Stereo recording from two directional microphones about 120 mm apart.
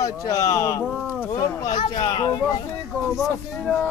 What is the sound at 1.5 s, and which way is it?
Speech, 35° left (ahead or behind).